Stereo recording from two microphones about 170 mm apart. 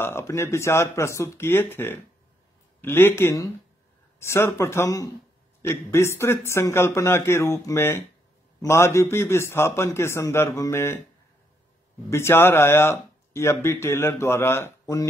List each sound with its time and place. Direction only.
0.0 s speech: 15° left (ahead or behind)
12.1 s speech: 15° left (ahead or behind)